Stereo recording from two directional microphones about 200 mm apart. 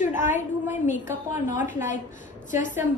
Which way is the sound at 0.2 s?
40° left (ahead or behind).